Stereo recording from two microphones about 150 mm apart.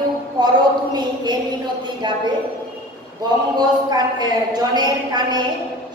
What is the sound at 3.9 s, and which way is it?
A woman's voice, 25° right (ahead or behind).